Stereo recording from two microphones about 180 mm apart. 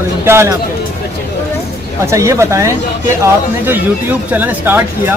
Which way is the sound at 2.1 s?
15° right (ahead or behind).